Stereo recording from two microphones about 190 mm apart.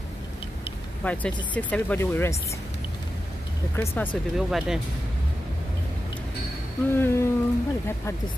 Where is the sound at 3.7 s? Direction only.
10° left (ahead or behind).